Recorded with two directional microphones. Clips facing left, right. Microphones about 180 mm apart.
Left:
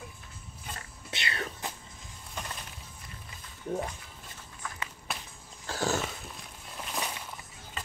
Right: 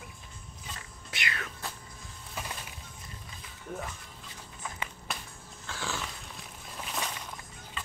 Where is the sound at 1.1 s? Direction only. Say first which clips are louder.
Left 2 dB; 30° left (ahead or behind).